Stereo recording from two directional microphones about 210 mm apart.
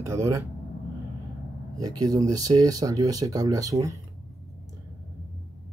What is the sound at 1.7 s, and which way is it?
Speech, 20° right (ahead or behind).